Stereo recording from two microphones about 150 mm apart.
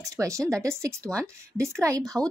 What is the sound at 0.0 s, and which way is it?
Speech, 20° right (ahead or behind).